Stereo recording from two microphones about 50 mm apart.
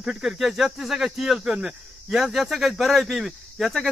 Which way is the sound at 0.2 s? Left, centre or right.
Centre.